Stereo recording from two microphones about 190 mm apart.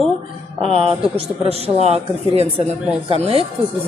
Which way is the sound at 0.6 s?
30° right (ahead or behind).